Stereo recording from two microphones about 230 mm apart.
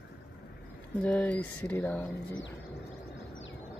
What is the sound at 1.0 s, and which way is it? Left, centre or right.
Speech, centre.